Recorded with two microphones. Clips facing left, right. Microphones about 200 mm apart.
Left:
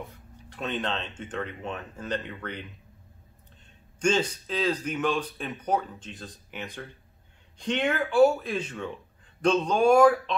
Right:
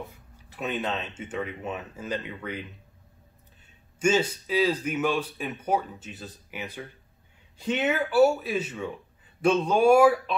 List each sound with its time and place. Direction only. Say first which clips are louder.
0.1 s speech: left 3 dB; 5° right (ahead or behind)
3.6 s speech: right 1 dB; 5° right (ahead or behind)